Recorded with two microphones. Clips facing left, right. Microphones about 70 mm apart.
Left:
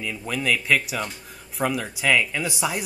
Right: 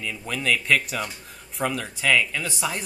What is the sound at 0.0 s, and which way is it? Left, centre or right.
Speech, centre.